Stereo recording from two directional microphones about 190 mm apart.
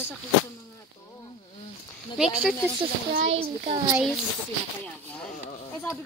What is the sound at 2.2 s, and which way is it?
Speech, centre (ahead or behind).